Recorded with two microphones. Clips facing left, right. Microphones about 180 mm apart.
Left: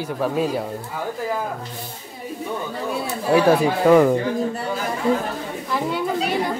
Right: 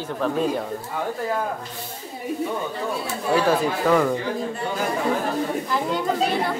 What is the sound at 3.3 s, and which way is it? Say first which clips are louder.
Speech: left 4 dB; 15° left (ahead or behind).